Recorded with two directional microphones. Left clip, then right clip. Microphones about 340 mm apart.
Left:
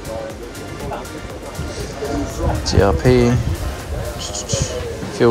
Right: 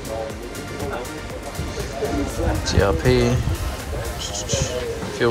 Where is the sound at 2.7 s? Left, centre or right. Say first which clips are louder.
Left 4 dB; centre.